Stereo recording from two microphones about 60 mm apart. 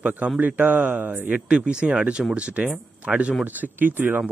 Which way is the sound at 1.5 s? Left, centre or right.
Centre.